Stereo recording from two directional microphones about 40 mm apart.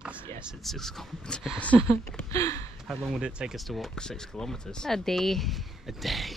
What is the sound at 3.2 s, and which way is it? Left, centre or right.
Speech, right.